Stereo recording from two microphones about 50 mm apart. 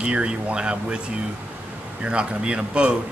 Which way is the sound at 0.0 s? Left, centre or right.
Centre.